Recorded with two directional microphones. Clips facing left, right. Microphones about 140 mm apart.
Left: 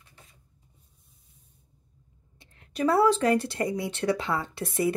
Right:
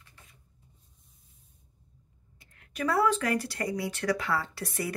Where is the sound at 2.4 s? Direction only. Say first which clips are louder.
Left 5 dB; 25° left (ahead or behind).